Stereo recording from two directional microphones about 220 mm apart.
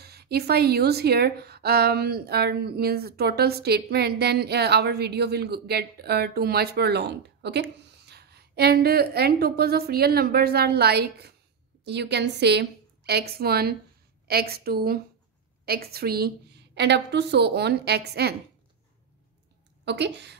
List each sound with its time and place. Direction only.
0.0 s a woman's voice: 45° right (ahead or behind)
19.8 s speech: 50° right (ahead or behind)